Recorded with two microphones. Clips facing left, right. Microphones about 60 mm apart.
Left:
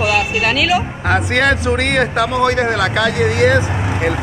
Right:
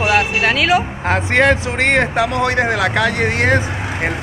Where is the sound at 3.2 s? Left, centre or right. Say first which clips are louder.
Left 2 dB; right.